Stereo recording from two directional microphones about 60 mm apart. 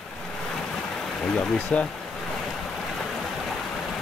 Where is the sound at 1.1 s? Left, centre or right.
Centre.